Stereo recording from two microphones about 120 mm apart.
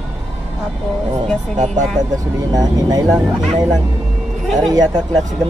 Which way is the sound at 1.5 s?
90° right.